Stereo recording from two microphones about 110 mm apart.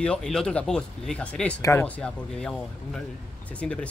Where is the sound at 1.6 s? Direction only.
25° left (ahead or behind).